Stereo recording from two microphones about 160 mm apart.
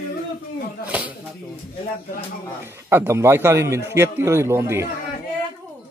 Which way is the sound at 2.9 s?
15° right (ahead or behind).